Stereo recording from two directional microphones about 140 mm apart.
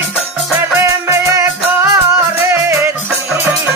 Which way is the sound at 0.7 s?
20° right (ahead or behind).